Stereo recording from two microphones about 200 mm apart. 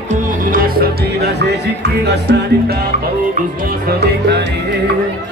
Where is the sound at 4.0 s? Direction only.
55° right (ahead or behind).